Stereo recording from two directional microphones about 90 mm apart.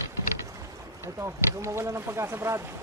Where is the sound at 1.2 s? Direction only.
30° right (ahead or behind).